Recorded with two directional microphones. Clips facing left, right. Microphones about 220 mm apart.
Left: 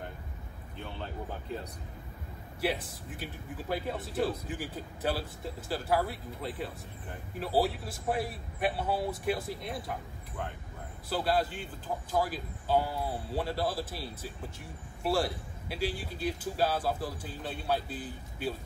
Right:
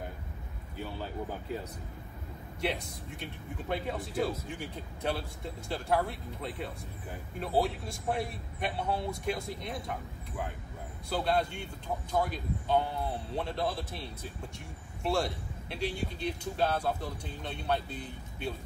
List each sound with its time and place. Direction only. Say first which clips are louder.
0.7 s speech: right 3 dB; 5° right (ahead or behind)
2.6 s a man's voice: left 2 dB; 5° left (ahead or behind)
11.1 s a man's voice: even; 5° left (ahead or behind)